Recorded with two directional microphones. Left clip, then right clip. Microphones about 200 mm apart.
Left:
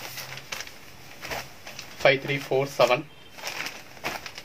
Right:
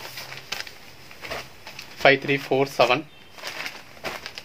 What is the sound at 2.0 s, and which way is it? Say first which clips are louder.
Speech: right 3 dB; 55° right (ahead or behind).